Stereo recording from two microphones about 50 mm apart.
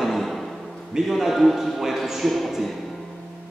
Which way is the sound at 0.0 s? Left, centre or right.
Centre.